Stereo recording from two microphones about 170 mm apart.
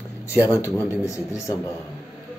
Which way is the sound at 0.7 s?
15° left (ahead or behind).